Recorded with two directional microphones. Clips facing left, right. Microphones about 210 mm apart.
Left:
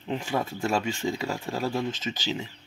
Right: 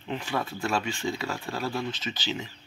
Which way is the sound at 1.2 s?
15° left (ahead or behind).